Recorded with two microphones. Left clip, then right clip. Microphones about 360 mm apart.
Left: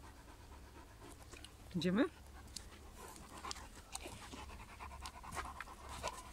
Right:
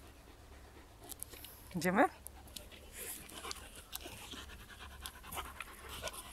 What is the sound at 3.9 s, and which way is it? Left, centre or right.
Pant, centre.